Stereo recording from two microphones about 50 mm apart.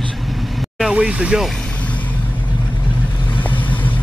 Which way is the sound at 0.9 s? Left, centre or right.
Right.